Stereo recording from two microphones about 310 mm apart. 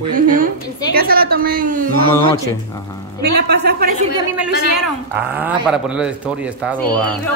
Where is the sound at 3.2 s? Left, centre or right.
Right.